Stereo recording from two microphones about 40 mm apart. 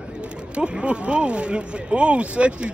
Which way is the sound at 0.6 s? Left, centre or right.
Right.